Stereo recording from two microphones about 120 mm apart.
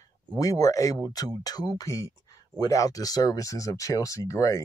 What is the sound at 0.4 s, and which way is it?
Speech, 30° left (ahead or behind).